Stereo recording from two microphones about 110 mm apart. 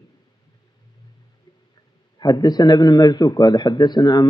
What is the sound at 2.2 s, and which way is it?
Speech, 40° left (ahead or behind).